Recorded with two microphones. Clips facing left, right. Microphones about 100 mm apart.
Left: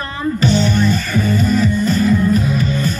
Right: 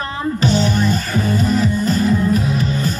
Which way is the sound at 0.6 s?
15° right (ahead or behind).